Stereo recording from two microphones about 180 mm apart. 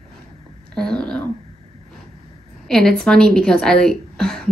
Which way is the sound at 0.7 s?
5° left (ahead or behind).